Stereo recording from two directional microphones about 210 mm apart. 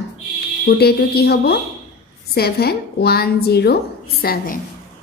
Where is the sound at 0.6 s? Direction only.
50° left (ahead or behind).